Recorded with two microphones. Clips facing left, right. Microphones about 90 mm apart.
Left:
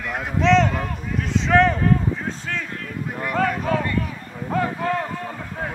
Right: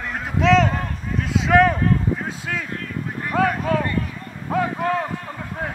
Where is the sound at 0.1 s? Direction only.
5° right (ahead or behind).